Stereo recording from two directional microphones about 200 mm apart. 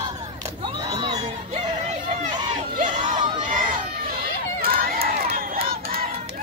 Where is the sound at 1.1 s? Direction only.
30° right (ahead or behind).